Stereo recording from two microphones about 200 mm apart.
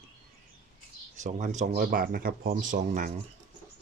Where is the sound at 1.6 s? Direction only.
45° right (ahead or behind).